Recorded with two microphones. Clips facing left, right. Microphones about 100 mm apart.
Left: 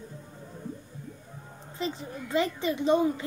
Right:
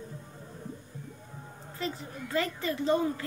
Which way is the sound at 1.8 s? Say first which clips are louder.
Left 3 dB; 20° left (ahead or behind).